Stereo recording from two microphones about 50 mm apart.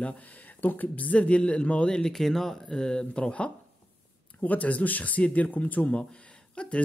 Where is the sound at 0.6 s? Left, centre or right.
Left.